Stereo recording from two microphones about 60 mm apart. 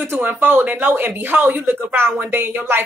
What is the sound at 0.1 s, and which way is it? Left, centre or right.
A woman's voice, right.